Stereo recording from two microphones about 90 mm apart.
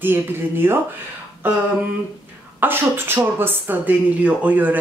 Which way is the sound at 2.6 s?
20° right (ahead or behind).